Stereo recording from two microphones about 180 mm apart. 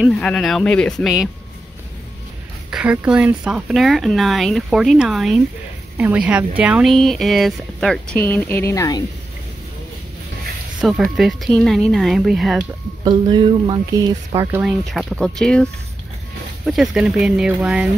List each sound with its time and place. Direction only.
0.0 s speech: 5° left (ahead or behind)
2.7 s speech: 5° right (ahead or behind); by 9.0 s 20° left (ahead or behind)
10.8 s speech: centre (ahead or behind)
13.0 s speech: 25° right (ahead or behind)
14.6 s speech: centre (ahead or behind)